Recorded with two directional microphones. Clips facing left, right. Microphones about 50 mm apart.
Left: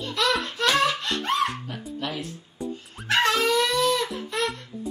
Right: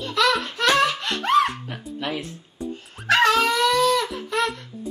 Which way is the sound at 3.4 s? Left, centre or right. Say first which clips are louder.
Right 3 dB; right.